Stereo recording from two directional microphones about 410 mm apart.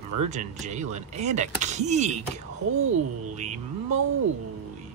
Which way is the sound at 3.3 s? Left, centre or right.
Centre.